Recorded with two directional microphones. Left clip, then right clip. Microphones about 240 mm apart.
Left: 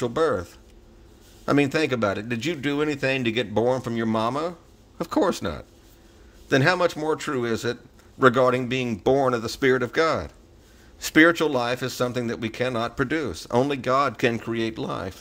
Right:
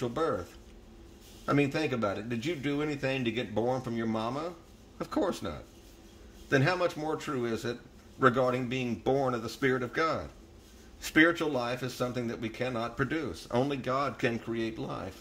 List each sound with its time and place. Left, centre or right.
0.0 s speech: left